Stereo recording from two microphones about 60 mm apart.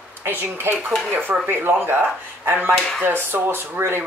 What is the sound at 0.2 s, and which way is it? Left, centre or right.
Speech, right.